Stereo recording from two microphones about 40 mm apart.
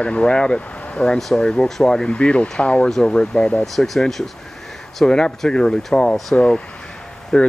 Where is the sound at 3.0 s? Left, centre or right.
Centre.